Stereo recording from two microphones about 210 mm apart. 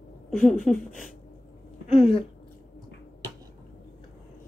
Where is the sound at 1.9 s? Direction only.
30° left (ahead or behind).